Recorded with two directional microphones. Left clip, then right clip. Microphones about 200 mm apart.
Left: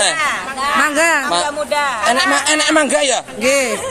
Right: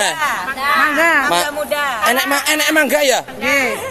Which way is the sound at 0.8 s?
65° left (ahead or behind).